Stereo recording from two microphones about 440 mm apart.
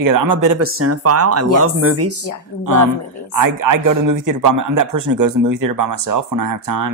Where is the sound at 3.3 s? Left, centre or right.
Right.